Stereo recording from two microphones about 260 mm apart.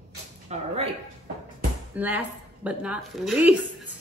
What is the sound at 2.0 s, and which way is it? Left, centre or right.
A woman's voice, centre.